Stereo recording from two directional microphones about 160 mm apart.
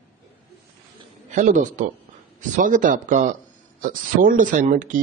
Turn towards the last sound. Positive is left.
turn(degrees=-55)  # may be behind; listen again after turning